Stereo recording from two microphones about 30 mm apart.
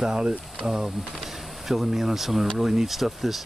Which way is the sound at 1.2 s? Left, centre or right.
Centre.